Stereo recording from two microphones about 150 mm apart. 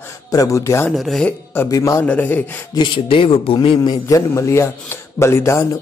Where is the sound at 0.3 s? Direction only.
20° left (ahead or behind).